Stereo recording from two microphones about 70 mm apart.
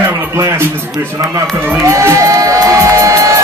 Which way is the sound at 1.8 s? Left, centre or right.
Right.